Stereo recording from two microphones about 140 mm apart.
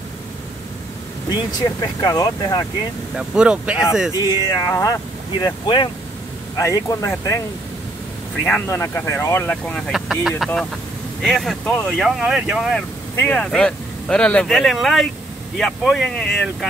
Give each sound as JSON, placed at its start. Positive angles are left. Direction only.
{"t": 1.3, "sound": "speech", "side_deg": 30}
{"t": 3.2, "sound": "speech", "side_deg": -5}
{"t": 4.3, "sound": "speech", "side_deg": 25}
{"t": 8.5, "sound": "speech", "side_deg": 15}
{"t": 13.1, "sound": "speech", "side_deg": 10}